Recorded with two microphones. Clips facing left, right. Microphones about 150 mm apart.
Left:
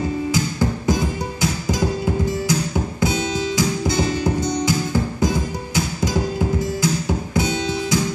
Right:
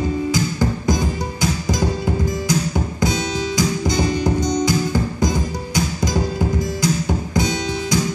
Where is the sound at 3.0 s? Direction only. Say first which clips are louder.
Even; 5° left (ahead or behind).